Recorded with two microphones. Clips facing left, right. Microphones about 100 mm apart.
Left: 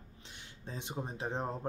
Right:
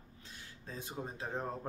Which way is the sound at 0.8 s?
20° left (ahead or behind).